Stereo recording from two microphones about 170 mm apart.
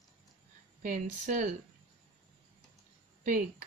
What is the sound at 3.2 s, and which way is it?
Speech, 50° right (ahead or behind).